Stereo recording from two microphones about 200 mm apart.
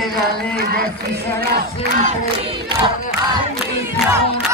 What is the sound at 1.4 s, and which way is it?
Battle cry, 45° right (ahead or behind).